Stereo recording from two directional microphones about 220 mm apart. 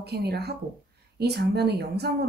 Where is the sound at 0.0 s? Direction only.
50° right (ahead or behind).